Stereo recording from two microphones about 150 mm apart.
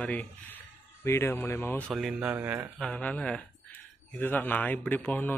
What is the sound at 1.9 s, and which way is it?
Speech, 5° right (ahead or behind).